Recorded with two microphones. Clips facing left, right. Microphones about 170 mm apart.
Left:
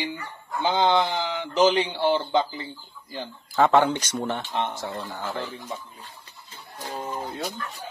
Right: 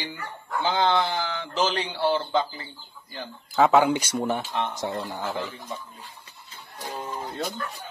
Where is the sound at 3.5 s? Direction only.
5° right (ahead or behind).